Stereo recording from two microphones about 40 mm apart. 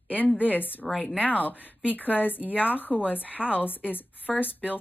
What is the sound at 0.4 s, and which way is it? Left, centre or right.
Speech, left.